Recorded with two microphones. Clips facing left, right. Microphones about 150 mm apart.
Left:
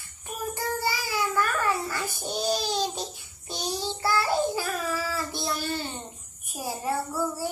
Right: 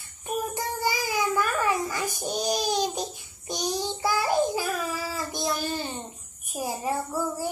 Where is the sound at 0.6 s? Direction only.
15° right (ahead or behind).